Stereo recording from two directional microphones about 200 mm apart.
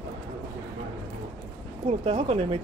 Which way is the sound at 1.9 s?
30° right (ahead or behind).